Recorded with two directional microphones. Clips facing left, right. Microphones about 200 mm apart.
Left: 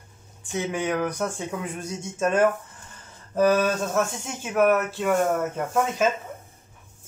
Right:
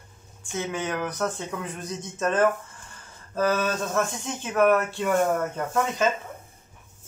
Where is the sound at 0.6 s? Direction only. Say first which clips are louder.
Left 3 dB; 10° left (ahead or behind).